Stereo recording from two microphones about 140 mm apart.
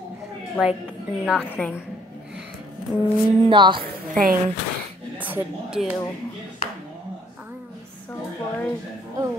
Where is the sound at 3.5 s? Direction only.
35° right (ahead or behind).